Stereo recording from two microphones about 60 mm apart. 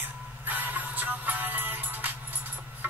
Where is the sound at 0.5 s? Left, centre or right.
Right.